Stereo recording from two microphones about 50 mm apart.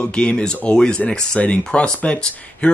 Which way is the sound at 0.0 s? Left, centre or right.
Left.